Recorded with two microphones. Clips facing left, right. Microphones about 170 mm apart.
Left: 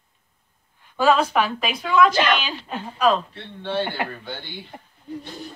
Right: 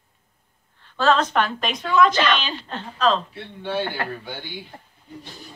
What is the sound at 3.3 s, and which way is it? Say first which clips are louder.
Speech: even; 10° right (ahead or behind).